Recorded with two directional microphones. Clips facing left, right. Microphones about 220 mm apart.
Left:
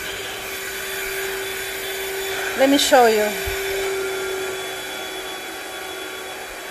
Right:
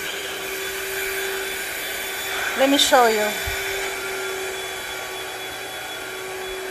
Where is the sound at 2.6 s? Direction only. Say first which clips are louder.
Left 3 dB; 20° left (ahead or behind).